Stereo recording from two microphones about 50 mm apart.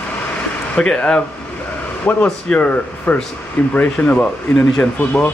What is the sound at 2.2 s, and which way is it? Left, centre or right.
Speech, left.